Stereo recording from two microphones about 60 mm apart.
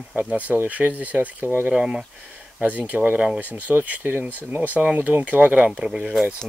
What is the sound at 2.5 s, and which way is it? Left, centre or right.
Speech, right.